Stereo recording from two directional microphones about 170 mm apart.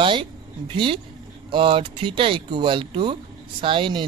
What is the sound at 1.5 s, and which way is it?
Speech, 30° right (ahead or behind).